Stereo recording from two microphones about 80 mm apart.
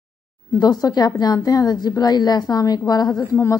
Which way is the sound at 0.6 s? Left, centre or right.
Left.